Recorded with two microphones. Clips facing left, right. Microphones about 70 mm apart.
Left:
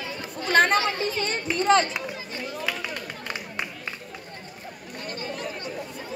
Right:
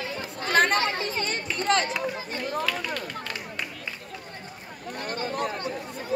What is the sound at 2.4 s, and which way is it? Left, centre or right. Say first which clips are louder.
Chatter: right 5 dB; right.